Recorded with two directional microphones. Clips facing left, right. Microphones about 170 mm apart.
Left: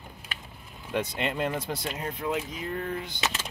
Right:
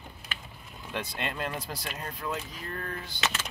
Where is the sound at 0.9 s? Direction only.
20° left (ahead or behind).